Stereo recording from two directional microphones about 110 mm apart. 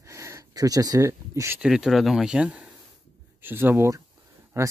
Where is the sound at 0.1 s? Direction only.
30° right (ahead or behind).